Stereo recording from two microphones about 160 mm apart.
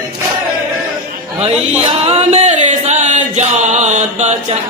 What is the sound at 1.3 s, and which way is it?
Speech, 40° right (ahead or behind).